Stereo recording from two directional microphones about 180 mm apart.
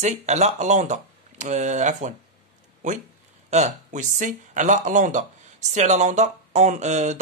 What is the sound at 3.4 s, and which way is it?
Speech, 40° right (ahead or behind).